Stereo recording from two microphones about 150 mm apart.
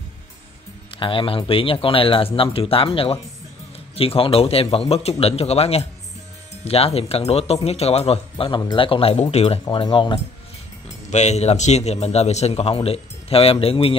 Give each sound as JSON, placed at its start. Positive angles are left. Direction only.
{"t": 0.9, "sound": "speech", "side_deg": 35}
{"t": 11.1, "sound": "speech", "side_deg": 50}